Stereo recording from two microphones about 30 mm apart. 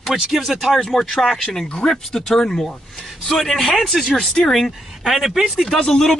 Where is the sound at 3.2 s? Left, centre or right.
Centre.